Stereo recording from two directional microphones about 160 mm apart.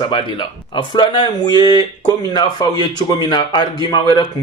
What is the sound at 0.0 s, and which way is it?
Speech, 30° left (ahead or behind).